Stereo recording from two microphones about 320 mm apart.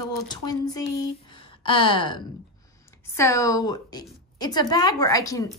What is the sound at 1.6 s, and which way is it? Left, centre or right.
Speech, centre.